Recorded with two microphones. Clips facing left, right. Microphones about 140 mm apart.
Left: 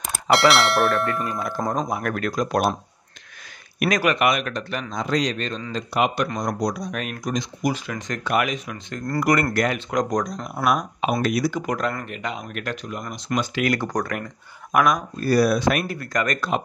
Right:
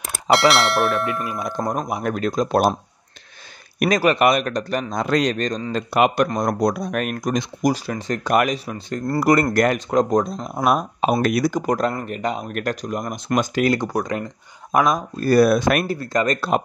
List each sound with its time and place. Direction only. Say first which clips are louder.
0.0 s speech: right 1 dB; centre (ahead or behind)
1.9 s speech: right 2 dB; 20° right (ahead or behind)
3.8 s speech: right 4 dB; 35° right (ahead or behind)
5.0 s a man's voice: right 3 dB; 55° right (ahead or behind)
5.8 s a man's voice: right 4 dB; 55° right (ahead or behind); by 11.1 s 35° right (ahead or behind)
11.1 s a man's voice: right 2 dB; 50° right (ahead or behind)
11.6 s speech: right 4 dB; 35° right (ahead or behind)
13.8 s speech: right 2 dB; 10° right (ahead or behind)
14.7 s speech: right 1 dB; 30° right (ahead or behind)
15.1 s a man's voice: right 6 dB; 50° right (ahead or behind)
15.9 s speech: right 4 dB; 30° right (ahead or behind)